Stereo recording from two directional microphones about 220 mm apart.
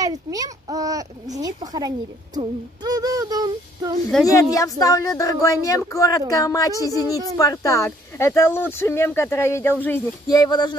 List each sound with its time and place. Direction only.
0.0 s a child's voice: 15° right (ahead or behind)
2.8 s a sound: 15° right (ahead or behind)
4.3 s speech: 15° left (ahead or behind)